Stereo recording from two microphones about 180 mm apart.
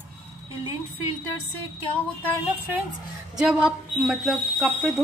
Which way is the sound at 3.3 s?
5° right (ahead or behind).